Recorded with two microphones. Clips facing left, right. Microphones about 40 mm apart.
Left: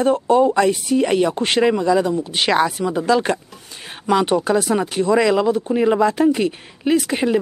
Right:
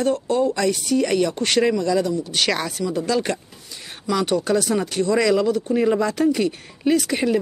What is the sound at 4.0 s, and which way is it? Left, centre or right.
Speech, left.